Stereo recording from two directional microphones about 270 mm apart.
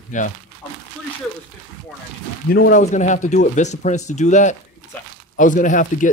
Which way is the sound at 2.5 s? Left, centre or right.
Left.